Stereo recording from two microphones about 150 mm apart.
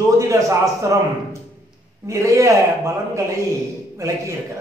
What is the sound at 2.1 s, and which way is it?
A man's voice, 20° right (ahead or behind).